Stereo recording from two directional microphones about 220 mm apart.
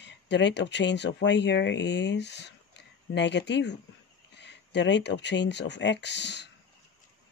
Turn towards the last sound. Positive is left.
turn(degrees=50)  # may be behind; listen again after turning